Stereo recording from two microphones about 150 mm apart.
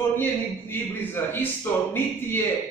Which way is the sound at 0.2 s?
15° left (ahead or behind).